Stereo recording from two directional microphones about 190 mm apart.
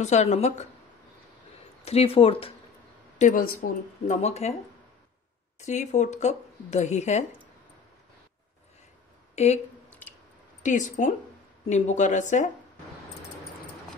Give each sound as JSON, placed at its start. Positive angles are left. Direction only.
{"t": 0.0, "sound": "speech", "side_deg": 35}
{"t": 1.9, "sound": "speech", "side_deg": 30}
{"t": 3.2, "sound": "speech", "side_deg": 45}
{"t": 5.6, "sound": "speech", "side_deg": 40}
{"t": 9.3, "sound": "speech", "side_deg": 35}
{"t": 10.6, "sound": "speech", "side_deg": 40}